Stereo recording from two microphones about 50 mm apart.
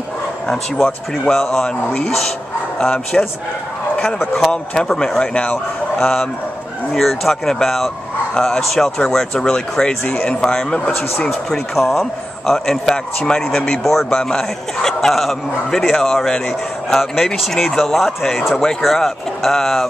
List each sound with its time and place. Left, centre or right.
0.5 s a man's voice: centre
5.9 s a man's voice: centre